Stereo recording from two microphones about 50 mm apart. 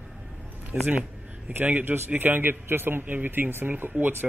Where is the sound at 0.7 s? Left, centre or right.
Right.